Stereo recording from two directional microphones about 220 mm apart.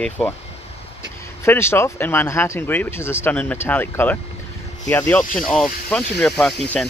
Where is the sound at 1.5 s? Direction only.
10° left (ahead or behind).